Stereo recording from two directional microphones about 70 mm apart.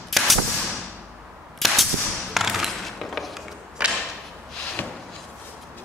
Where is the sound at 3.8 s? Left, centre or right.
Centre.